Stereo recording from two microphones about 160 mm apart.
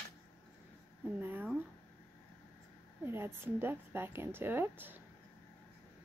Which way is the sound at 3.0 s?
15° right (ahead or behind).